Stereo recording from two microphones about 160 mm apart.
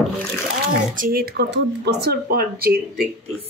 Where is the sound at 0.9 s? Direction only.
65° right (ahead or behind).